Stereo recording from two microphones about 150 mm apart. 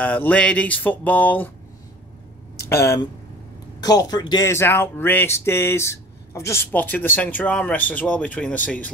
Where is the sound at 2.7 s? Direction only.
20° left (ahead or behind).